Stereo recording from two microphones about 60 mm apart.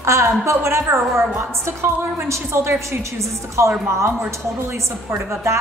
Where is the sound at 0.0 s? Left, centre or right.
Right.